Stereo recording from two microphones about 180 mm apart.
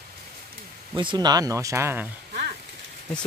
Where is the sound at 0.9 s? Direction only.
25° right (ahead or behind).